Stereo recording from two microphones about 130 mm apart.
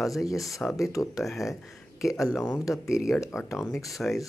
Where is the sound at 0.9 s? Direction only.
25° left (ahead or behind).